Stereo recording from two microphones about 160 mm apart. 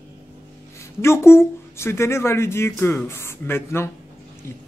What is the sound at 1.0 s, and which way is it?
Speech, 15° left (ahead or behind).